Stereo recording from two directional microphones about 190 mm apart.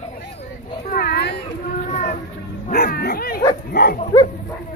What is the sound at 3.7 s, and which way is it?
Livestock, 50° left (ahead or behind).